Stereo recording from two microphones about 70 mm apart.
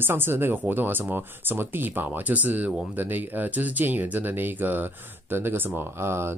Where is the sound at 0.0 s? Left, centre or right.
Right.